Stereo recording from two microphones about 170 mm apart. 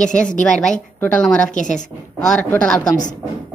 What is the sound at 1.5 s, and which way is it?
Speech, 45° left (ahead or behind).